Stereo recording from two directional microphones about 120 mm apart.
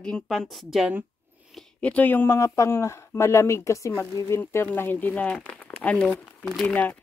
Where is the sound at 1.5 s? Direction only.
10° left (ahead or behind).